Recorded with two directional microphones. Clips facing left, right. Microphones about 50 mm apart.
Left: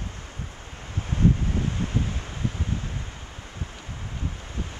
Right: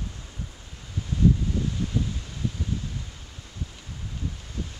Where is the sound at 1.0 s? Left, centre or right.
Left.